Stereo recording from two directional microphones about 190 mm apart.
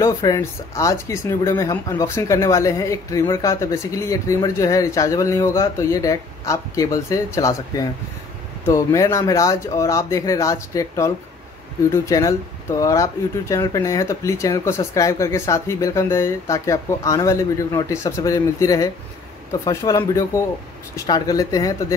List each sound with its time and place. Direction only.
0.0 s speech: 15° left (ahead or behind)